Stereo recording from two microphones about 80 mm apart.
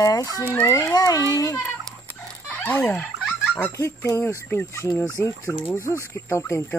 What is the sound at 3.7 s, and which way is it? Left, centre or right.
Speech, left.